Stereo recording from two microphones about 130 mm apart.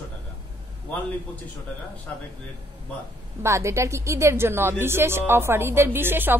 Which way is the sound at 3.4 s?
20° right (ahead or behind).